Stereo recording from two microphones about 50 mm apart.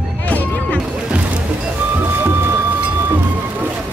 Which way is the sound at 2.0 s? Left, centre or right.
Right.